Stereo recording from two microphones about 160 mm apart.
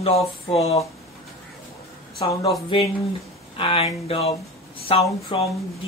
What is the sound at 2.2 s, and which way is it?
Speech, 30° left (ahead or behind).